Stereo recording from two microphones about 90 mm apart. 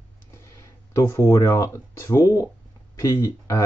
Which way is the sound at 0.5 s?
35° left (ahead or behind).